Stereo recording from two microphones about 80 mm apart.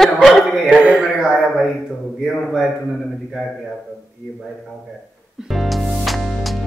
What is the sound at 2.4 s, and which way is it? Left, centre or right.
Speech, centre.